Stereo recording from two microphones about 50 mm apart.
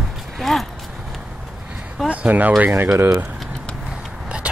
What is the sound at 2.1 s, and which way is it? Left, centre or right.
Speech, right.